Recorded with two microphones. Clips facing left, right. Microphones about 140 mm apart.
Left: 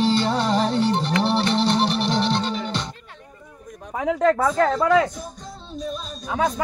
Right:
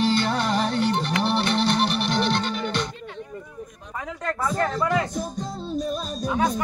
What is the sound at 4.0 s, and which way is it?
Speech, 90° left.